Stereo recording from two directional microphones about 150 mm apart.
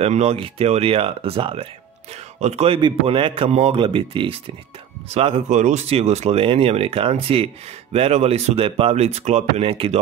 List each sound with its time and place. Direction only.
0.0 s speech: 45° right (ahead or behind)